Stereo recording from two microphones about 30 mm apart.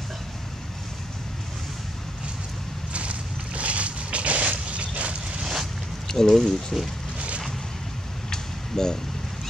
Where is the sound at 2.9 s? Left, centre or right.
Right.